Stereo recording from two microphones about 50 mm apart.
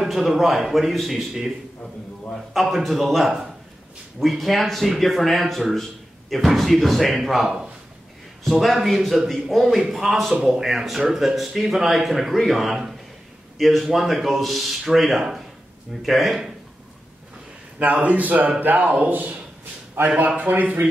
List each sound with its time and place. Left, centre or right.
0.0 s speech: centre
2.5 s a man's voice: centre
18.0 s speech: right